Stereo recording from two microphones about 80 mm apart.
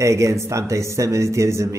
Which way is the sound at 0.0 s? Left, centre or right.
Right.